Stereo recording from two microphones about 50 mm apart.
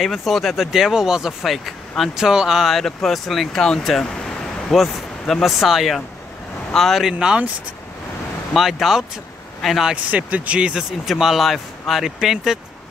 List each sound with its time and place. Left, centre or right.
0.0 s speech: centre
0.7 s speech: centre
2.6 s speech: centre
4.0 s a sound: centre
5.4 s speech: centre
7.2 s speech: centre
8.5 s speech: centre
10.1 s speech: right; by 12.5 s centre